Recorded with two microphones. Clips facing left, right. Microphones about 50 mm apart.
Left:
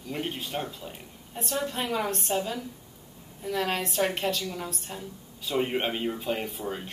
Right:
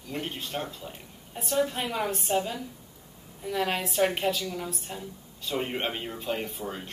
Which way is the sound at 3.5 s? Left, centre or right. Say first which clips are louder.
Even; centre.